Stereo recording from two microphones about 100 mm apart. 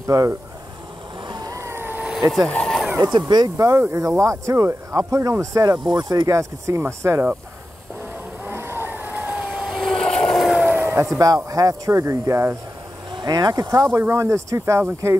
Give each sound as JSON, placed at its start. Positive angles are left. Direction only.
{"t": 0.0, "sound": "speech", "side_deg": -35}
{"t": 1.2, "sound": "vehicle", "side_deg": -45}
{"t": 1.6, "sound": "vehicle", "side_deg": -25}
{"t": 2.3, "sound": "speech", "side_deg": 5}
{"t": 3.0, "sound": "speech", "side_deg": -45}
{"t": 3.5, "sound": "speech", "side_deg": -30}
{"t": 6.3, "sound": "speech", "side_deg": -30}
{"t": 8.5, "sound": "vehicle", "side_deg": -25}
{"t": 9.6, "sound": "vehicle", "side_deg": 0}
{"t": 10.6, "sound": "a sound", "side_deg": -20}
{"t": 11.1, "sound": "speech", "side_deg": -35}
{"t": 13.1, "sound": "speech", "side_deg": -40}
{"t": 13.8, "sound": "speech", "side_deg": -25}